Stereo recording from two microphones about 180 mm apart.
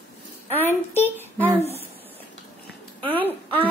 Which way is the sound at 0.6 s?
10° left (ahead or behind).